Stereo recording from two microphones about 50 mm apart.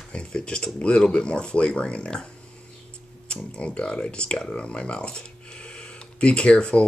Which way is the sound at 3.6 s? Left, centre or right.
Left.